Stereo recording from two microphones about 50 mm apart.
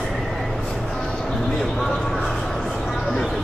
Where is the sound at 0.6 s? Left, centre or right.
Centre.